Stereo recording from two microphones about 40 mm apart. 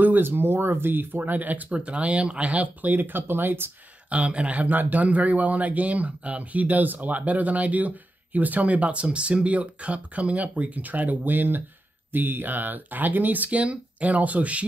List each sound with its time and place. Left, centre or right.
0.0 s speech: right
1.7 s speech: right
4.1 s speech: right